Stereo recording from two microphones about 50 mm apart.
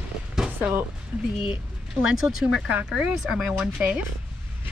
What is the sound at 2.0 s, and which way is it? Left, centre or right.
Speech, centre.